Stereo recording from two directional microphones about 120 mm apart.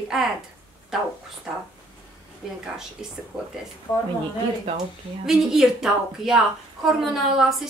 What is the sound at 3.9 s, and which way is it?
Speech, 30° left (ahead or behind).